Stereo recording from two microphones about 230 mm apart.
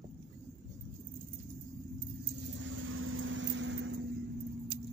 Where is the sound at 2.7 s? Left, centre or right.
Right.